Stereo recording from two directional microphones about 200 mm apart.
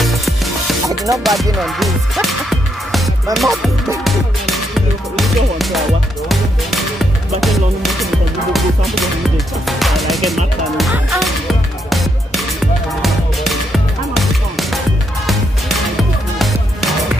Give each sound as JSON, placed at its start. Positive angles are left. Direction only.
{"t": 0.0, "sound": "music", "side_deg": 0}
{"t": 0.8, "sound": "music", "side_deg": -15}
{"t": 1.2, "sound": "speech", "side_deg": 0}
{"t": 3.3, "sound": "music", "side_deg": 0}
{"t": 9.7, "sound": "speech", "side_deg": 0}
{"t": 11.9, "sound": "music", "side_deg": 0}